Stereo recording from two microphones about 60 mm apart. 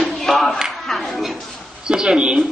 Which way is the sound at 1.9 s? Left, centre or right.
Centre.